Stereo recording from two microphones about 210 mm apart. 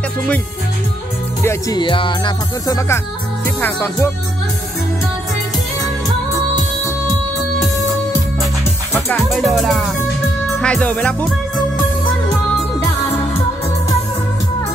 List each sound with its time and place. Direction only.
1.4 s music: 15° left (ahead or behind)
9.3 s speech: centre (ahead or behind)
10.6 s music: 5° left (ahead or behind)